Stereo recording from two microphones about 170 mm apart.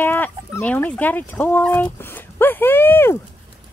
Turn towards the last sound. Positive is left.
turn(degrees=15)  # may be behind; listen again after turning